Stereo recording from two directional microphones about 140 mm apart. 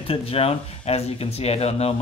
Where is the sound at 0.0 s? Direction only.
40° left (ahead or behind).